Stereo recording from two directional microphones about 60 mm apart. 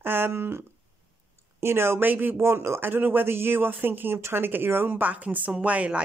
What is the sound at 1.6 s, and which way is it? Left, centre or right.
Speech, right.